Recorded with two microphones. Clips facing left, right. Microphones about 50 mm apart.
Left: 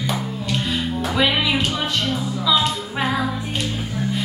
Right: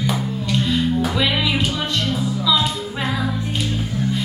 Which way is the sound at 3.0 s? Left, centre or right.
Centre.